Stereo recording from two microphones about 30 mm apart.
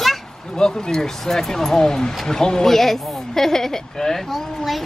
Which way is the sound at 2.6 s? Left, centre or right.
Centre.